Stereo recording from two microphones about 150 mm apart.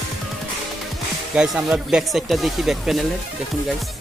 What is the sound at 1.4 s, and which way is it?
Speech, 5° right (ahead or behind).